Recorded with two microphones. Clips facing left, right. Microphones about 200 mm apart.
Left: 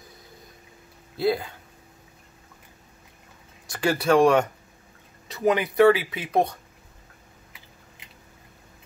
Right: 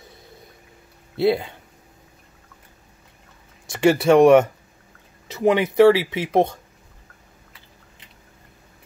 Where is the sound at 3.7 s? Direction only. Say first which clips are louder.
Right 6 dB; 25° right (ahead or behind).